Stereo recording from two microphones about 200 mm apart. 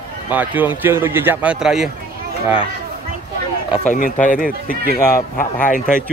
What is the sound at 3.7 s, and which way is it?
Speech, 40° left (ahead or behind).